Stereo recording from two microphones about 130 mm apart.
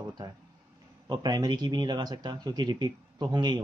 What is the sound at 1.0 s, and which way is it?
Speech, 30° right (ahead or behind).